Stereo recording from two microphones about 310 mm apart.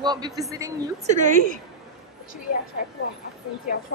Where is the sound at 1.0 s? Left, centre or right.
Right.